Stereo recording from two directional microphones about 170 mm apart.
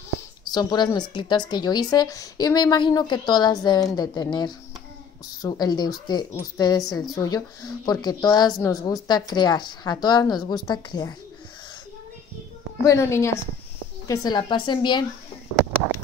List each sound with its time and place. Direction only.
0.5 s speech: 25° left (ahead or behind)
12.8 s a woman's voice: 15° left (ahead or behind)